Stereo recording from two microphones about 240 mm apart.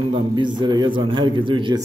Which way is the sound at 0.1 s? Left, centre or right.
Centre.